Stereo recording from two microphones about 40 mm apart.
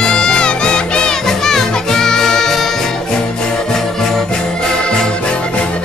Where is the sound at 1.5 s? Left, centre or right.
Centre.